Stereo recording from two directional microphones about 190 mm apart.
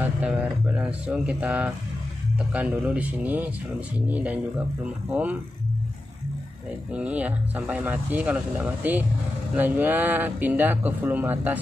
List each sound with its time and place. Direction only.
0.0 s speech: 10° right (ahead or behind)
6.9 s speech: 5° right (ahead or behind)